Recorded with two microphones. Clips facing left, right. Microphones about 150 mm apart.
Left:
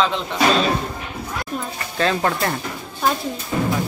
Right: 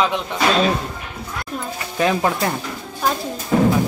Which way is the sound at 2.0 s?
10° right (ahead or behind).